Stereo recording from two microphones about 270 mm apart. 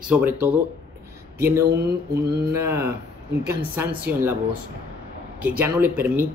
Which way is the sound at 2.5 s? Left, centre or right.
Centre.